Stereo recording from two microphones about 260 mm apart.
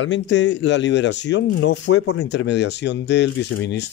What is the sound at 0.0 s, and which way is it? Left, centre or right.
Speech, left.